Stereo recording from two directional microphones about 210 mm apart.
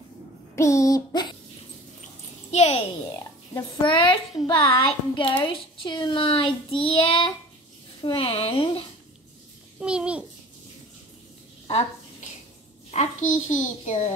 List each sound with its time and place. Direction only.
0.6 s child singing: 15° left (ahead or behind)
2.5 s a child's voice: 30° left (ahead or behind)
9.8 s babbling: 5° right (ahead or behind)
11.6 s a sound: 30° left (ahead or behind)
12.9 s a child's voice: 35° left (ahead or behind)